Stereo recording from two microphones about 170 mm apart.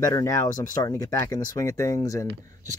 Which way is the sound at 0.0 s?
20° left (ahead or behind).